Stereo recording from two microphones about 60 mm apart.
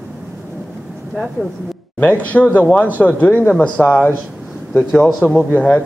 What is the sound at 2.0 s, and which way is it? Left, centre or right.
Speech, left.